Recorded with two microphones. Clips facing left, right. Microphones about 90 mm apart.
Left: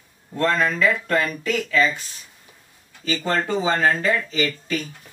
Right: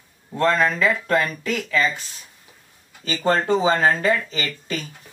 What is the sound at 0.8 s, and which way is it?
Speech, 5° right (ahead or behind).